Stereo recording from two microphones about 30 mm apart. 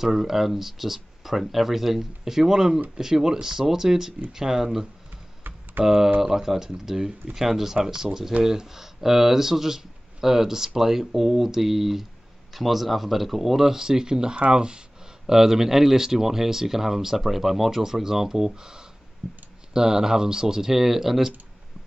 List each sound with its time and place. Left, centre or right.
0.0 s speech: centre
5.9 s speech: centre
13.7 s speech: centre
15.2 s speech: centre